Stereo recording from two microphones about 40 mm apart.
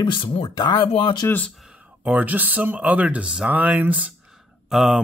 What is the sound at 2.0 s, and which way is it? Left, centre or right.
Speech, right.